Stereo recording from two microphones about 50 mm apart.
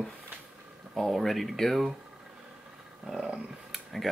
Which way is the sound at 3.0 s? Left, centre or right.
Centre.